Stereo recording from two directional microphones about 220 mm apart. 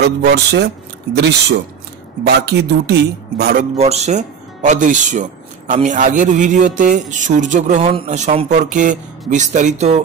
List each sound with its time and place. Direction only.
0.0 s a man's voice: 50° right (ahead or behind)
3.7 s a man's voice: 30° right (ahead or behind)